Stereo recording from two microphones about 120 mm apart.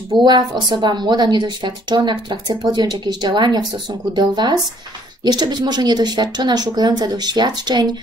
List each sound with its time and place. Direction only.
0.2 s a woman's voice: 40° right (ahead or behind)